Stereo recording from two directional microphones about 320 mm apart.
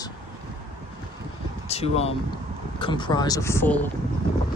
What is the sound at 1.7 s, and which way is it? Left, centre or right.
Speech, centre.